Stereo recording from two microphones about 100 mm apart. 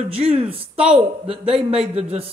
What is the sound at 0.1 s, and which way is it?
A man's voice, 75° right (ahead or behind).